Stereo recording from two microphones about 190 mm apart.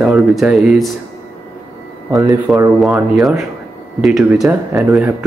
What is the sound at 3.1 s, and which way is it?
Speech, centre (ahead or behind).